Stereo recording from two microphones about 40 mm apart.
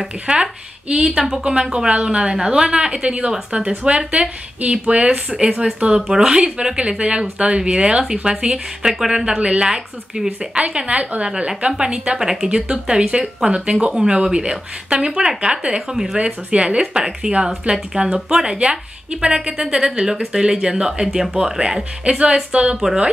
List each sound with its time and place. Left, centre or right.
0.3 s a woman's voice: right
1.1 s speech: centre
1.4 s a woman's voice: right
5.9 s a woman's voice: centre
9.4 s a woman's voice: right
9.7 s a woman's voice: centre
16.3 s a woman's voice: right
22.2 s a woman's voice: right